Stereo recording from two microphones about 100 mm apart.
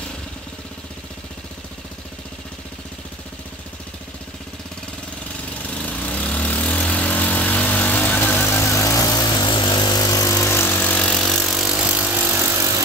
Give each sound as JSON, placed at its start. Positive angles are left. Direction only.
{"t": 5.8, "sound": "vehicle", "side_deg": 15}
{"t": 11.2, "sound": "a sound", "side_deg": 0}
{"t": 11.9, "sound": "vehicle", "side_deg": -15}